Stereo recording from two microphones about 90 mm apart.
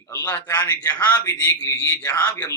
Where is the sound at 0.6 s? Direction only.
20° left (ahead or behind).